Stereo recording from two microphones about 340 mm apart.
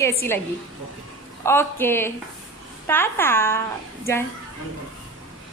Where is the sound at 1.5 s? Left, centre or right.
Centre.